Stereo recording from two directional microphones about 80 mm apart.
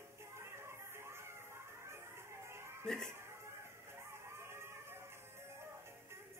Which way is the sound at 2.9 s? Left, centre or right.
Centre.